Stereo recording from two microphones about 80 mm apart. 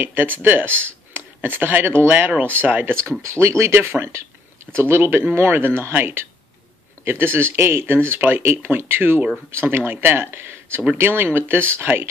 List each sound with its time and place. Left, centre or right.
0.0 s speech: right